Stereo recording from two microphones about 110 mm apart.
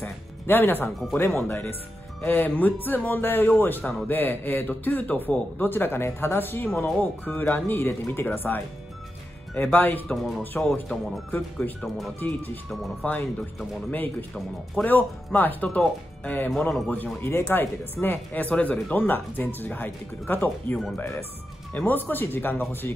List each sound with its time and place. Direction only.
0.0 s a man's voice: 20° left (ahead or behind)
10.0 s speech: centre (ahead or behind)
13.0 s a man's voice: 15° left (ahead or behind)
14.3 s a man's voice: 15° left (ahead or behind)
16.9 s a man's voice: 15° left (ahead or behind)